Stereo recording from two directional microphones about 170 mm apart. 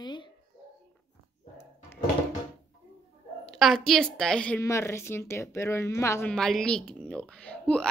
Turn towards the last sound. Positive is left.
turn(degrees=5)  # may be behind; listen again after turning